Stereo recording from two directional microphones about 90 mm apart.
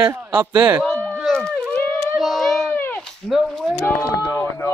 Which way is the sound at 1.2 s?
10° left (ahead or behind).